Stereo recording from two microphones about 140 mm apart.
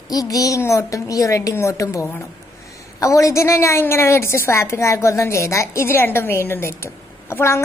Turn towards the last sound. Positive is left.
turn(degrees=20)  # may be behind; listen again after turning